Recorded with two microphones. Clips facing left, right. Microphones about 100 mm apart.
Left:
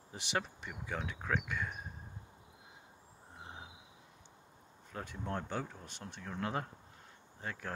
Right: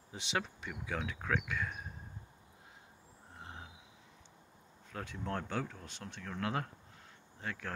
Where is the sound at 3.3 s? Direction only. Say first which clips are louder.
Even; 10° left (ahead or behind).